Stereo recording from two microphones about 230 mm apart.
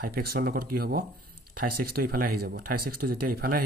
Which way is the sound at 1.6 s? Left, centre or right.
Right.